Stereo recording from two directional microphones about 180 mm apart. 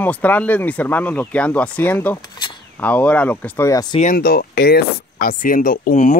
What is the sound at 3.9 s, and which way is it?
Speech, 50° left (ahead or behind).